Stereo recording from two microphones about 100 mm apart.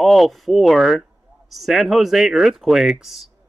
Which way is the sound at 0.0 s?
Centre (ahead or behind).